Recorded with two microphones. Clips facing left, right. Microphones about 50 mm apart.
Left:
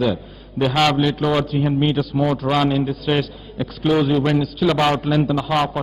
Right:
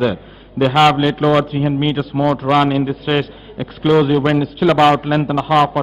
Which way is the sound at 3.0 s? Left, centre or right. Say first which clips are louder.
Right 2 dB; right.